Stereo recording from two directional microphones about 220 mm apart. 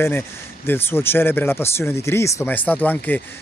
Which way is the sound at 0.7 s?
10° left (ahead or behind).